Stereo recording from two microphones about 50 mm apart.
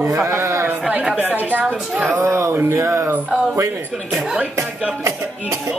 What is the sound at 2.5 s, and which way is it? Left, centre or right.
Speech, right.